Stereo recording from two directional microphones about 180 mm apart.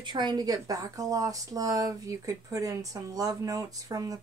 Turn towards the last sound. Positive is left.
turn(degrees=-20)  # may be behind; listen again after turning